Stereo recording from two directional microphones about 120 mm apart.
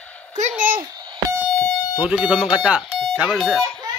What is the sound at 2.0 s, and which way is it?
Speech, 10° right (ahead or behind).